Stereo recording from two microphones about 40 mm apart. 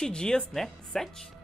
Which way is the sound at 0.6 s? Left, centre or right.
Centre.